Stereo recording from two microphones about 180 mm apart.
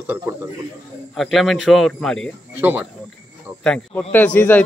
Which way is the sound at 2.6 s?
10° right (ahead or behind).